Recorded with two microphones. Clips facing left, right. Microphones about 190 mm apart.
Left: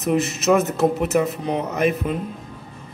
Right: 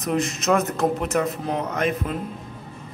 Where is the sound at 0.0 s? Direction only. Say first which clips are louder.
Left 3 dB; 5° left (ahead or behind).